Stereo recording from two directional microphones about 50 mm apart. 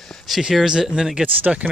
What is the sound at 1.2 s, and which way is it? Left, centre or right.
Speech, right.